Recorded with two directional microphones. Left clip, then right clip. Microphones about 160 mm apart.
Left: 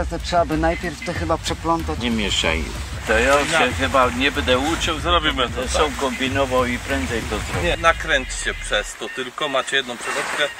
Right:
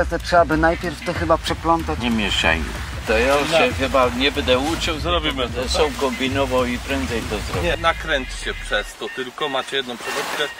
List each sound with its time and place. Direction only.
0.0 s speech: 5° left (ahead or behind)
2.0 s speech: 20° right (ahead or behind)
7.8 s speech: 45° left (ahead or behind)